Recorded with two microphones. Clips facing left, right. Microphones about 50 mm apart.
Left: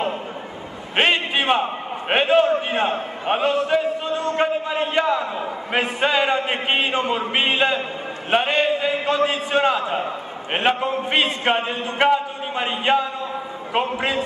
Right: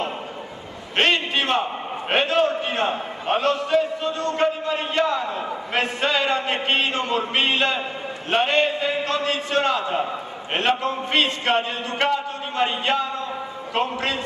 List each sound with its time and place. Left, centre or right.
0.9 s a man's voice: centre